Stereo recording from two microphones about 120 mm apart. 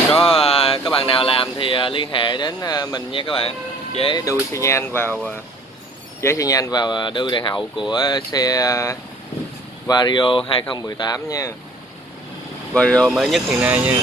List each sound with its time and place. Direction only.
0.2 s speech: 50° left (ahead or behind); by 3.0 s 35° left (ahead or behind)
3.1 s speech: 45° left (ahead or behind)
4.1 s speech: 30° left (ahead or behind)
6.2 s speech: 30° left (ahead or behind)
9.8 s speech: 35° left (ahead or behind)
12.7 s speech: 10° left (ahead or behind)
13.1 s speech: centre (ahead or behind)
13.5 s speech: 15° right (ahead or behind)